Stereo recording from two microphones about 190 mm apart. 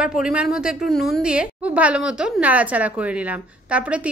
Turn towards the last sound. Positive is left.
turn(degrees=-5)  # may be behind; listen again after turning